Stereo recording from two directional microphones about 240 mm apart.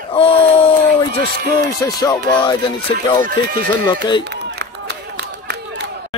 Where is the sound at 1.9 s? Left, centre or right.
Centre.